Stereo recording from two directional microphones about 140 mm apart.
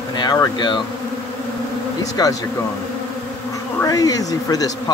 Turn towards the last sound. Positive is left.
turn(degrees=25)  # may be behind; listen again after turning